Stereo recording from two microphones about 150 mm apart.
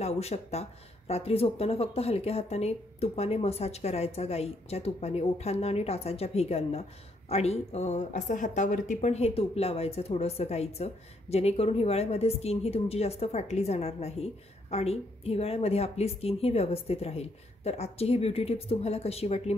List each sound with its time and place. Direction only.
0.0 s speech: 45° left (ahead or behind)